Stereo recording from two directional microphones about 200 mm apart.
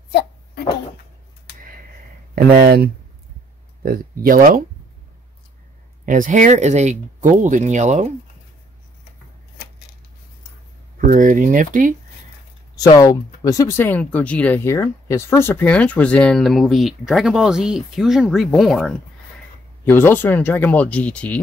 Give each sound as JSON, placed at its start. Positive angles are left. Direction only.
{"t": 0.1, "sound": "cough", "side_deg": 55}
{"t": 2.3, "sound": "speech", "side_deg": -50}
{"t": 6.0, "sound": "speech", "side_deg": -40}
{"t": 11.0, "sound": "speech", "side_deg": -40}
{"t": 12.7, "sound": "speech", "side_deg": 20}